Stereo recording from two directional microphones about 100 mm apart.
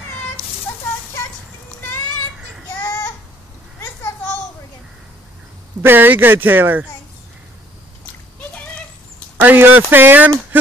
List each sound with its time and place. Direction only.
5.8 s speech: 20° right (ahead or behind)
8.4 s a sound: 15° left (ahead or behind)
9.4 s speech: 15° right (ahead or behind)